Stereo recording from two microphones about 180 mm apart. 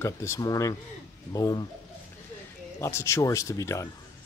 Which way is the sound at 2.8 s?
15° left (ahead or behind).